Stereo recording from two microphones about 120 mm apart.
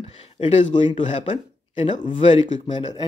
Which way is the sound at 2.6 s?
40° left (ahead or behind).